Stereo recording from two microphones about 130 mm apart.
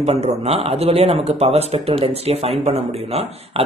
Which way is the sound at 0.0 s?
55° right (ahead or behind).